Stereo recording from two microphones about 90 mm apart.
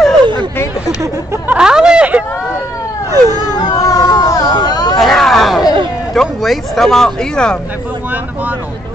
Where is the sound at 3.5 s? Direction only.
45° left (ahead or behind).